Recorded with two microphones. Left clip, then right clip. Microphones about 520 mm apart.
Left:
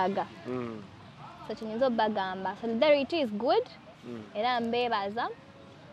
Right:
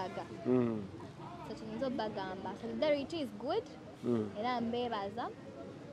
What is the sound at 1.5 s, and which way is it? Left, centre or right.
A woman's voice, left.